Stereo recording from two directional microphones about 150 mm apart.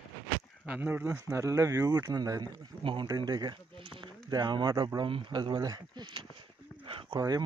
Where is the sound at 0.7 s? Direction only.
10° right (ahead or behind).